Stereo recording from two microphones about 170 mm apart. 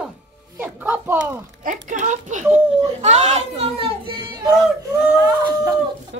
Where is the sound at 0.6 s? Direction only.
15° right (ahead or behind).